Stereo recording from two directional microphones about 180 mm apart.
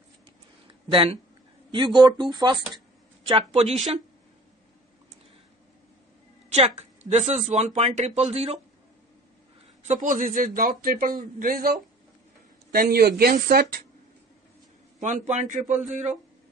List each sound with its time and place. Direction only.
0.8 s speech: 30° right (ahead or behind)
6.5 s speech: 40° right (ahead or behind)
9.8 s a man's voice: 45° right (ahead or behind)
15.0 s a man's voice: 40° right (ahead or behind)